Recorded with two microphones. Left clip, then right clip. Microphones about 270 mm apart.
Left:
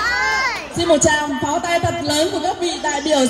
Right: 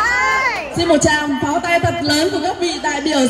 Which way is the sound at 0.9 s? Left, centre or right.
Left.